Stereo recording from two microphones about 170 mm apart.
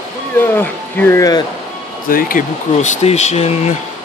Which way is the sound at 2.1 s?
50° left (ahead or behind).